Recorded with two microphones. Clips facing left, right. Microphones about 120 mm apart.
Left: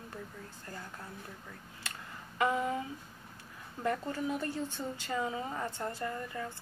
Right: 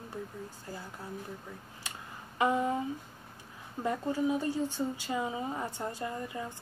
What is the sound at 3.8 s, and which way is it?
Speech, 15° right (ahead or behind).